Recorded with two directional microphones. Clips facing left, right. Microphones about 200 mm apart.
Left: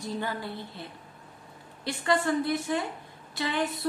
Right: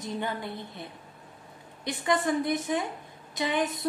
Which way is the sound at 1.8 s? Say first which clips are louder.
Even; 20° right (ahead or behind).